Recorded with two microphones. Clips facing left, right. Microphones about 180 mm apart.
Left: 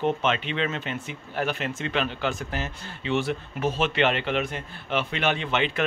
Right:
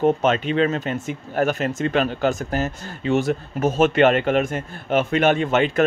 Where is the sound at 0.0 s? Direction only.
40° right (ahead or behind).